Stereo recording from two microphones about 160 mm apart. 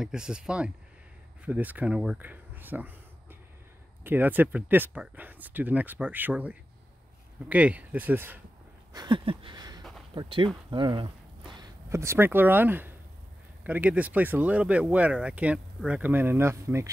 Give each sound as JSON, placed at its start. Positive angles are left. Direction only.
{"t": 0.0, "sound": "speech", "side_deg": -5}
{"t": 8.9, "sound": "a sound", "side_deg": -30}
{"t": 10.1, "sound": "speech", "side_deg": -30}